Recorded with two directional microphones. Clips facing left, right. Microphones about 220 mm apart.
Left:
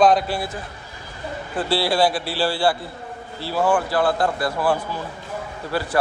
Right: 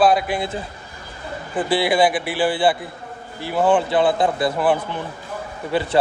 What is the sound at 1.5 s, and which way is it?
A man's voice, 15° right (ahead or behind).